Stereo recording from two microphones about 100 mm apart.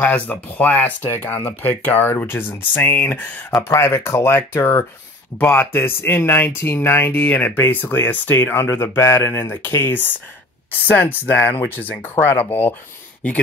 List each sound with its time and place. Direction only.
0.0 s speech: 15° left (ahead or behind)